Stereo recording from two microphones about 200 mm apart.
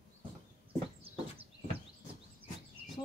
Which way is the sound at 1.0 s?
30° right (ahead or behind).